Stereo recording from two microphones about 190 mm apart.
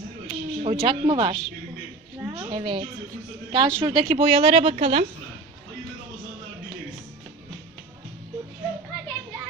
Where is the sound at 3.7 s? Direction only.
25° right (ahead or behind).